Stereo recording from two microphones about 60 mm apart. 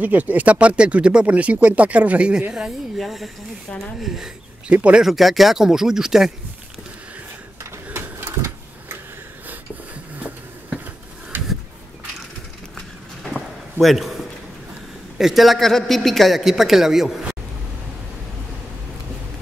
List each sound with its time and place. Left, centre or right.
0.0 s speech: right
3.0 s a man's voice: centre
7.9 s printer: right
10.1 s a sound: right
12.7 s a sound: centre
15.1 s a man's voice: centre